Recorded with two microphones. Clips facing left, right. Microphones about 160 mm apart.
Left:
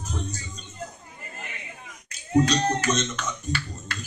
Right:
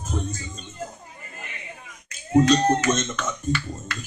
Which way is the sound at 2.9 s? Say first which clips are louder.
Right 2 dB; 50° right (ahead or behind).